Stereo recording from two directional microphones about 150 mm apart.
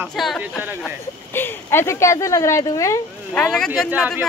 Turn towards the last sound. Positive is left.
turn(degrees=-10)  # may be behind; listen again after turning